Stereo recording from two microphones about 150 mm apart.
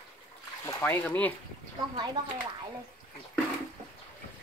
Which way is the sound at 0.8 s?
10° left (ahead or behind).